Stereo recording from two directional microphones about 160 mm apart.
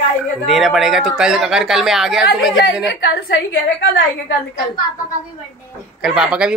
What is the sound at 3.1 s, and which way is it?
Speech, 80° left.